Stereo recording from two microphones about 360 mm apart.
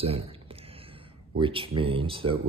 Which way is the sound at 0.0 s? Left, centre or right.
Centre.